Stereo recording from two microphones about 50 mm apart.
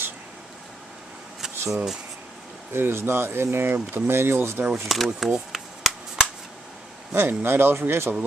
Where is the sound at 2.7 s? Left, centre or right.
Right.